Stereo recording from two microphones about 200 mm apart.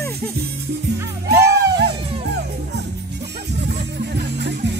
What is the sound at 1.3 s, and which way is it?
Music, 15° right (ahead or behind).